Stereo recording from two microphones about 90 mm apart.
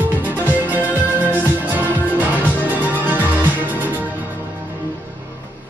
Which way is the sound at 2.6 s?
20° right (ahead or behind).